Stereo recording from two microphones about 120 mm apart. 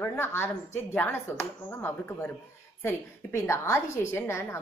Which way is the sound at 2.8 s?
20° left (ahead or behind).